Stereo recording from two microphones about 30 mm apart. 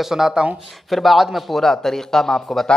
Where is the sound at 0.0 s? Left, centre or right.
Centre.